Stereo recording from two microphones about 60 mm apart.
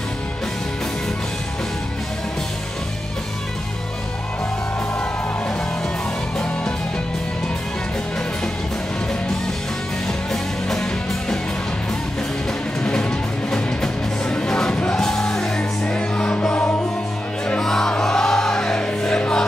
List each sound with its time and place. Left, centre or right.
10.0 s music: centre
12.8 s music: centre